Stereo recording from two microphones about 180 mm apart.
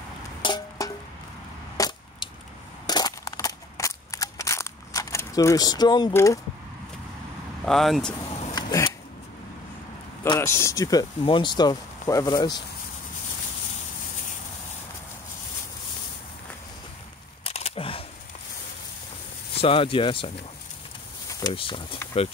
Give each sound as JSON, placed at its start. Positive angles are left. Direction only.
{"t": 0.4, "sound": "music", "side_deg": 25}
{"t": 1.8, "sound": "a sound", "side_deg": 25}
{"t": 7.6, "sound": "speech", "side_deg": 0}
{"t": 8.3, "sound": "a sound", "side_deg": 40}
{"t": 8.5, "sound": "a sound", "side_deg": 25}
{"t": 10.4, "sound": "speech", "side_deg": 15}
{"t": 17.4, "sound": "single-lens reflex camera", "side_deg": 35}
{"t": 19.6, "sound": "speech", "side_deg": 30}
{"t": 21.5, "sound": "speech", "side_deg": 30}